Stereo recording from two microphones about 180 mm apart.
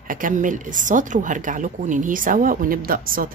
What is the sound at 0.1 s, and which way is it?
A woman's voice, 45° right (ahead or behind).